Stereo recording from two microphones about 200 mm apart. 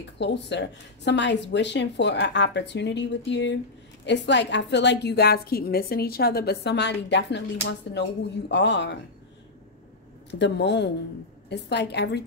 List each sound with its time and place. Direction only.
0.0 s a woman's voice: 60° left (ahead or behind)
10.4 s a woman's voice: 60° left (ahead or behind)